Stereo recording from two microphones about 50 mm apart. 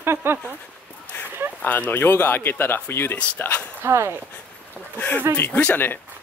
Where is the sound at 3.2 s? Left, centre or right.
Left.